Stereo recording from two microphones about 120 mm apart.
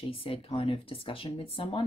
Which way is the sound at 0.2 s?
50° left (ahead or behind).